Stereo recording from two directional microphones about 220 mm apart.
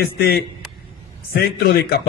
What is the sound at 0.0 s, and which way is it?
A man's voice, 45° left (ahead or behind).